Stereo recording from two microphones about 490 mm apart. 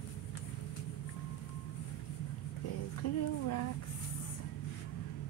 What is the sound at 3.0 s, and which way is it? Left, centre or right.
Speech, left.